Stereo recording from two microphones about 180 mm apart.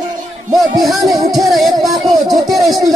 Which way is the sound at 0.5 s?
Centre (ahead or behind).